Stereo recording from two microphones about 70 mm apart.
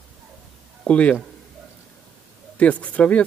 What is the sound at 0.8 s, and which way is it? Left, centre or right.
Speech, centre.